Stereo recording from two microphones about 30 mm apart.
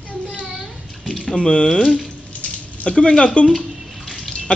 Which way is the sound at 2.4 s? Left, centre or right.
Left.